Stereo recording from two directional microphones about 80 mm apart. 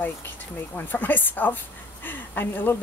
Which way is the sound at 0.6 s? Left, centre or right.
Left.